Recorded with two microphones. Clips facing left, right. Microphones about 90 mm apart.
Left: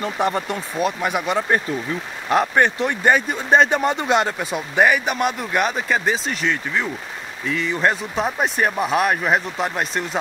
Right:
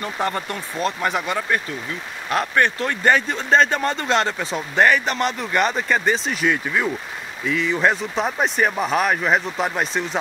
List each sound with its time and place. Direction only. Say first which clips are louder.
0.0 s speech: left 3 dB; 15° left (ahead or behind); by 10.1 s centre (ahead or behind)